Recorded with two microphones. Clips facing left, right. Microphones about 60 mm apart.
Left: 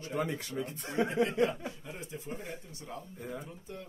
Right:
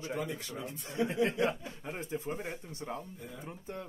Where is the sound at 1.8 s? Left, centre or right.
Right.